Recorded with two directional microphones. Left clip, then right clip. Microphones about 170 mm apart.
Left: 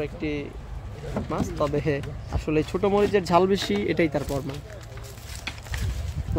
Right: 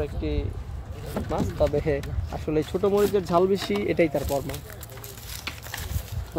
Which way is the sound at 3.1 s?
45° left (ahead or behind).